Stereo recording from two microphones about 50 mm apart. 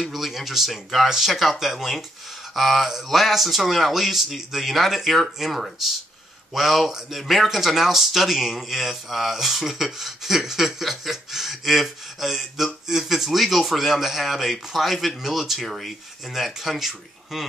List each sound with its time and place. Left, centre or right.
0.0 s speech: centre